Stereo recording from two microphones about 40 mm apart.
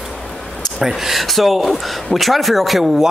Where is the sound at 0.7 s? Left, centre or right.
Centre.